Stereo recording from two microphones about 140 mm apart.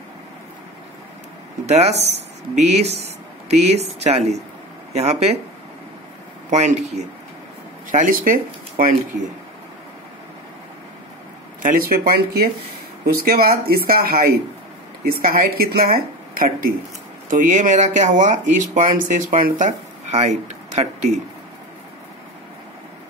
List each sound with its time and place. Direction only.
1.7 s speech: 50° right (ahead or behind)
6.5 s speech: 55° right (ahead or behind)
7.9 s speech: 75° right (ahead or behind)
11.6 s a woman's voice: 90° right
17.3 s speech: 65° right (ahead or behind)